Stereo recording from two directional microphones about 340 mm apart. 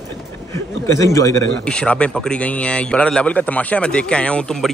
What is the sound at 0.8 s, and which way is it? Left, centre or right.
A man's voice, centre.